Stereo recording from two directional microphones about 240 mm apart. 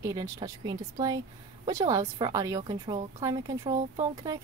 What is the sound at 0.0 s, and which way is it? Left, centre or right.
A woman's voice, centre.